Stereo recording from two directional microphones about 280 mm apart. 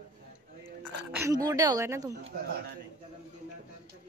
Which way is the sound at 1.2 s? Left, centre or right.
Centre.